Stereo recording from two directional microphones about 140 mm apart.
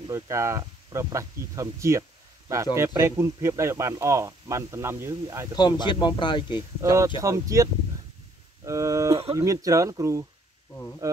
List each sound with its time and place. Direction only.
0.0 s speech: 20° right (ahead or behind)
5.6 s speech: 30° left (ahead or behind)
6.8 s speech: 20° right (ahead or behind)